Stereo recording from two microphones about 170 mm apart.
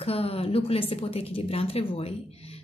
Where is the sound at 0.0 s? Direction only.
35° left (ahead or behind).